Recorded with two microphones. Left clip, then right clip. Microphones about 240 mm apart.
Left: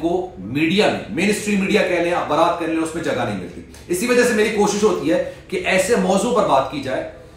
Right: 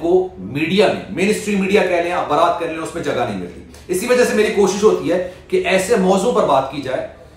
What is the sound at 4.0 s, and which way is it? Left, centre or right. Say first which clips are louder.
A man's voice: right 2 dB; centre.